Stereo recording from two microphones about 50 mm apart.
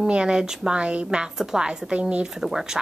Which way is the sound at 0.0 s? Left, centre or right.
Centre.